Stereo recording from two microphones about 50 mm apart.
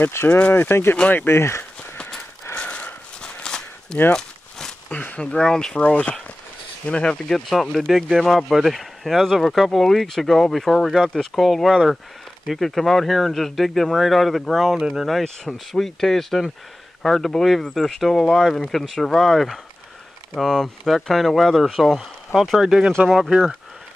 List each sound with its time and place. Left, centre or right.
0.2 s speech: left
0.5 s speech: left
2.5 s walk: left
4.1 s a sound: centre
4.8 s speech: left
5.2 s speech: centre
7.6 s speech: centre
15.2 s speech: centre